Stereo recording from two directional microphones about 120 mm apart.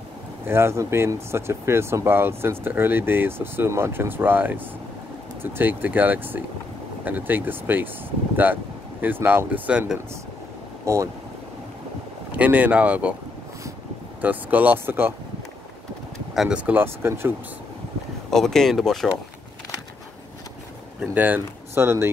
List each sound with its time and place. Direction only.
0.5 s speech: 20° right (ahead or behind)
9.0 s speech: 15° right (ahead or behind)
10.9 s speech: 25° right (ahead or behind)
12.3 s speech: 10° right (ahead or behind)
14.2 s speech: 15° right (ahead or behind)
16.3 s speech: 10° right (ahead or behind)
18.3 s speech: 5° left (ahead or behind)
21.0 s speech: 15° right (ahead or behind)